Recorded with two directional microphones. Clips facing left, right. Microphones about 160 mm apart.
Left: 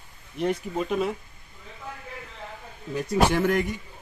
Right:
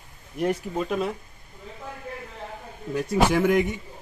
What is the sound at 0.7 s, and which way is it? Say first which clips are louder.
Speech: even; centre (ahead or behind).